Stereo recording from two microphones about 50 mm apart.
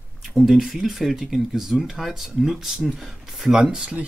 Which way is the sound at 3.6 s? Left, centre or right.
Centre.